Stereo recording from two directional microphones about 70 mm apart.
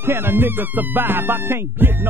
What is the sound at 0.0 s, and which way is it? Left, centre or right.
Music, right.